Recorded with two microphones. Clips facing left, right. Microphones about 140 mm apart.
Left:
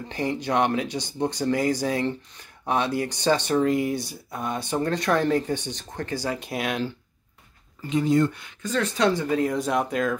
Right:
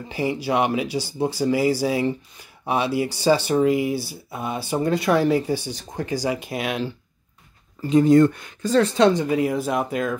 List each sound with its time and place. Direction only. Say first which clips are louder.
0.1 s speech: right 2 dB; 5° right (ahead or behind)
7.8 s speech: right 7 dB; 45° right (ahead or behind)
8.6 s speech: right 6 dB; 30° right (ahead or behind); by 10.1 s 5° right (ahead or behind)